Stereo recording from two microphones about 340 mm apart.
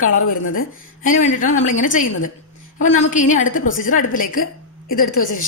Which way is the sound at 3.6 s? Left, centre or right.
Left.